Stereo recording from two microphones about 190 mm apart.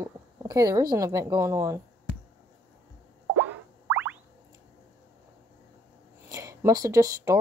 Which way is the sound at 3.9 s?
10° right (ahead or behind).